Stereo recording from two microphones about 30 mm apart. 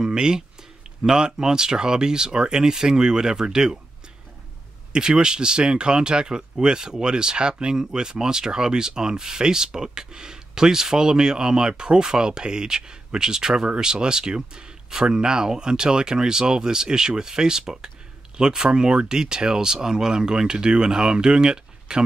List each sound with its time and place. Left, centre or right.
0.0 s speech: right
4.9 s speech: right